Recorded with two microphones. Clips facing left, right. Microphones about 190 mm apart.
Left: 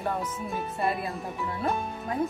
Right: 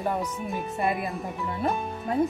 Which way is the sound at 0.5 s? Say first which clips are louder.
Right 1 dB; 20° right (ahead or behind).